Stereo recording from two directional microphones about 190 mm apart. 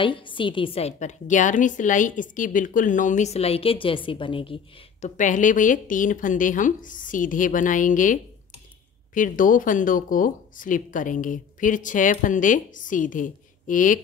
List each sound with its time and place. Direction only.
0.0 s a woman's voice: 25° left (ahead or behind)
5.0 s speech: 40° left (ahead or behind)